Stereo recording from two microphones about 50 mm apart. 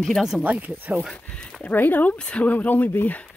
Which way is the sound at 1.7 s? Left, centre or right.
Left.